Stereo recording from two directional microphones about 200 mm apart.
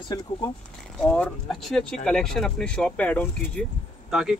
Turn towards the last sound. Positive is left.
turn(degrees=0)  # may be behind; listen again after turning